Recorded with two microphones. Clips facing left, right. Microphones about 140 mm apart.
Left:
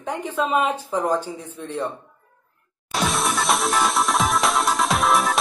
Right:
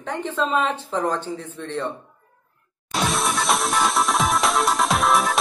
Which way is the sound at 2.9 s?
Centre (ahead or behind).